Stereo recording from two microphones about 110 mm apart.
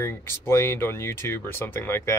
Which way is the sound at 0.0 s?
25° left (ahead or behind).